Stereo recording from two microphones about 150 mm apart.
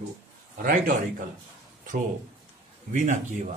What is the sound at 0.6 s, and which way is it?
Speech, 65° right (ahead or behind).